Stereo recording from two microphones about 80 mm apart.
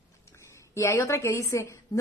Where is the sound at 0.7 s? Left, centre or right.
Left.